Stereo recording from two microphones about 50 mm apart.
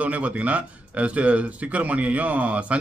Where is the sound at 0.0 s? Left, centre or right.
Right.